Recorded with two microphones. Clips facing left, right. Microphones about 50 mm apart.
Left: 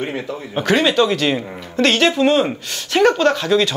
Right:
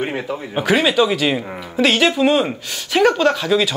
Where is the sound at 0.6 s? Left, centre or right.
Centre.